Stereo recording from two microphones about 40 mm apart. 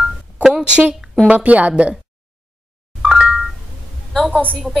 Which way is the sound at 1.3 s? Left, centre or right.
Right.